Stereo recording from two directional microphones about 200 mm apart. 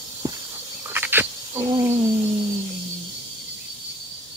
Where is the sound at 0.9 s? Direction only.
10° right (ahead or behind).